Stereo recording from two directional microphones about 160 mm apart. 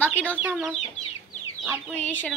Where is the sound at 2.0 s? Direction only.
10° left (ahead or behind).